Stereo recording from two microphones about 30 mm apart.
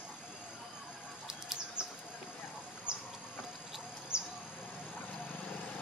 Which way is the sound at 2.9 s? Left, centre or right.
Right.